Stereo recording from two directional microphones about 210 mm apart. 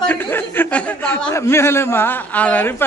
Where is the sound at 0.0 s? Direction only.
10° left (ahead or behind).